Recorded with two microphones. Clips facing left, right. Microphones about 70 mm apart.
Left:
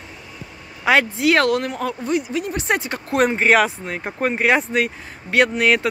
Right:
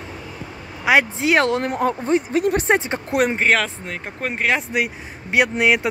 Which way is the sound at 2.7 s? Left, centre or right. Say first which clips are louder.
Right 3 dB; right.